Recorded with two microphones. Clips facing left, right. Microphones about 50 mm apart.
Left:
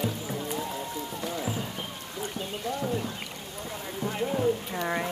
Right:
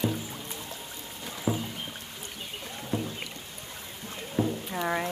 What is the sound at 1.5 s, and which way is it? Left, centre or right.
Rowboat, right.